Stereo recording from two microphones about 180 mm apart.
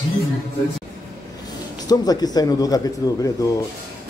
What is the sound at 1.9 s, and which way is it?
Speech, 20° left (ahead or behind).